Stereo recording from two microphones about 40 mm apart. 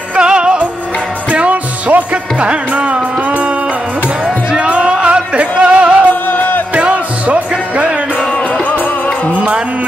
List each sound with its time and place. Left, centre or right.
0.1 s music: right
1.3 s music: right
4.5 s music: right
6.2 s music: left
6.7 s music: right